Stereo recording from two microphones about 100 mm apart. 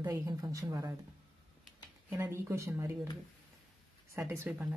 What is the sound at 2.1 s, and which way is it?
Speech, 25° right (ahead or behind).